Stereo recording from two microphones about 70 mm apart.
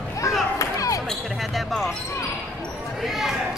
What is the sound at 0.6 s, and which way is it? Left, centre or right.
Basketball bounce, left.